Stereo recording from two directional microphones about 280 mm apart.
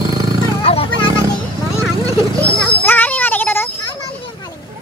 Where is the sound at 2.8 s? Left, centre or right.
Centre.